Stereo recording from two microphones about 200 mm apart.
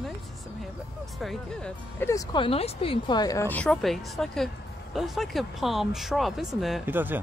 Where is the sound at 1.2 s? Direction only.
5° left (ahead or behind).